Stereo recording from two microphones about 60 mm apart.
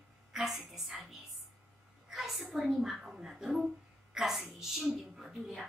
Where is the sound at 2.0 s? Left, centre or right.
Centre.